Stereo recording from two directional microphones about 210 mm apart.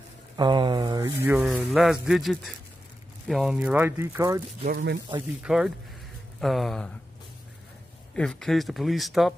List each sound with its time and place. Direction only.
0.4 s speech: 20° right (ahead or behind)
4.6 s speech: 50° right (ahead or behind)
5.4 s speech: 5° right (ahead or behind)
8.1 s speech: 5° left (ahead or behind)